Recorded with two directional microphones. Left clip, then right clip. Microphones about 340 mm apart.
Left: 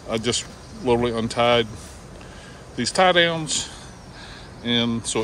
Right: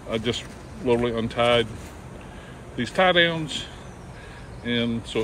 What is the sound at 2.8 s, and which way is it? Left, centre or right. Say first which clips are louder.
Speech: left 2 dB; centre.